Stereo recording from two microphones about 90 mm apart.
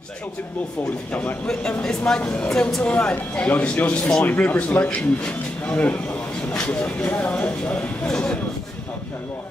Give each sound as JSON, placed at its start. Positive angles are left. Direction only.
{"t": 1.1, "sound": "speech", "side_deg": 15}